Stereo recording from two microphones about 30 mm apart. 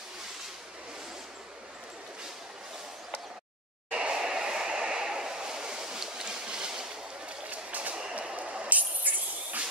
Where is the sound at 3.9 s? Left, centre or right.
Right.